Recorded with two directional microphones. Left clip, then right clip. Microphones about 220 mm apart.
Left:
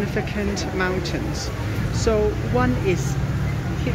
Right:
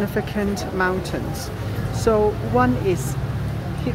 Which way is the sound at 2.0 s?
15° right (ahead or behind).